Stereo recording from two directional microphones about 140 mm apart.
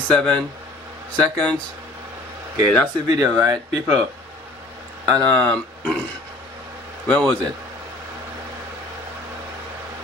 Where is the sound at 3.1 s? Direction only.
25° right (ahead or behind).